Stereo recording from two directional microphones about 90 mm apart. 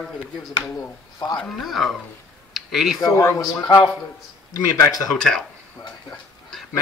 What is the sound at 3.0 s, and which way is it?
Speech, 35° left (ahead or behind).